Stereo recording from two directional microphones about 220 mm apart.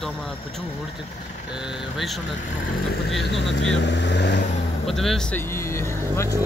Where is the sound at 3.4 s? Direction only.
55° left (ahead or behind).